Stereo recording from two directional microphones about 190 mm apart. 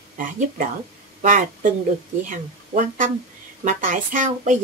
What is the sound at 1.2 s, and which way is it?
Speech, 40° right (ahead or behind).